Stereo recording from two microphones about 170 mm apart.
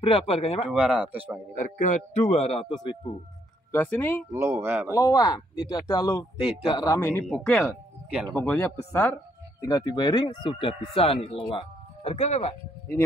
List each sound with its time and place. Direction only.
0.0 s speech: 35° left (ahead or behind)
0.7 s speech: 10° right (ahead or behind)
1.5 s speech: 45° left (ahead or behind); by 3.2 s 30° left (ahead or behind)
3.7 s speech: 10° left (ahead or behind)
4.3 s speech: 15° right (ahead or behind)
4.9 s speech: 20° left (ahead or behind)
9.7 s speech: 20° left (ahead or behind); by 12.5 s 40° left (ahead or behind)